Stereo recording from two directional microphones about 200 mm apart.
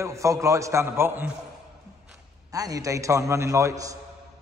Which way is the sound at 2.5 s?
15° right (ahead or behind).